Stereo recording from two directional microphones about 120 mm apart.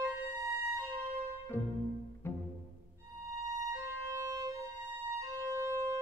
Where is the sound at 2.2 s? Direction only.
20° left (ahead or behind).